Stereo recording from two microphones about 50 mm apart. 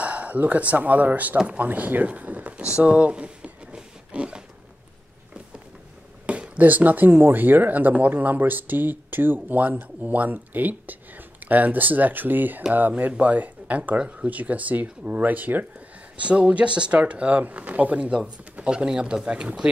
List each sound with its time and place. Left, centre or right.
0.0 s speech: right
2.8 s a sound: right
6.2 s speech: right
16.2 s speech: right